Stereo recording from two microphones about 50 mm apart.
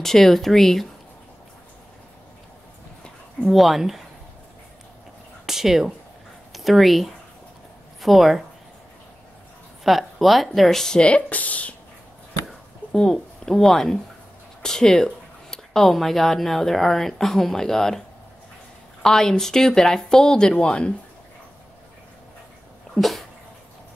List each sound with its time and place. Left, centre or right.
0.0 s speech: centre
3.4 s speech: centre
5.5 s speech: centre
9.8 s speech: centre
11.0 s speech: left
12.9 s speech: centre
19.0 s speech: centre
22.9 s cat: centre